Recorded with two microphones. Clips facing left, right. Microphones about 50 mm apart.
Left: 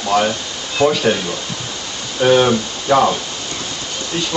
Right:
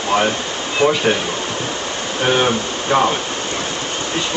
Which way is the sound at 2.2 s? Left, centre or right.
Centre.